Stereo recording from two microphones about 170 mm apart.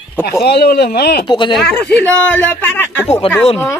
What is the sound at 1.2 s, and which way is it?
Speech, 25° left (ahead or behind).